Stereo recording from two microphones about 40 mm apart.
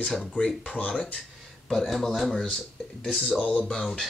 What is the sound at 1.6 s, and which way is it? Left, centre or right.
Speech, centre.